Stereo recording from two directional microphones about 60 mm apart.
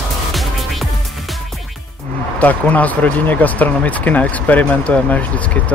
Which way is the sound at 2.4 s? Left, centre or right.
Left.